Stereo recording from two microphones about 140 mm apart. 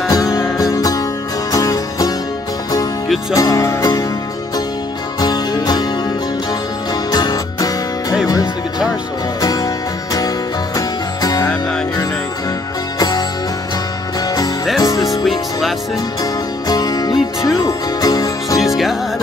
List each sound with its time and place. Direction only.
0.1 s music: 25° left (ahead or behind)
3.3 s music: 25° left (ahead or behind)
5.2 s music: 30° left (ahead or behind)
7.1 s music: 30° left (ahead or behind)
14.8 s music: 25° left (ahead or behind)
15.0 s music: centre (ahead or behind)
16.6 s music: 30° left (ahead or behind)
18.6 s music: centre (ahead or behind)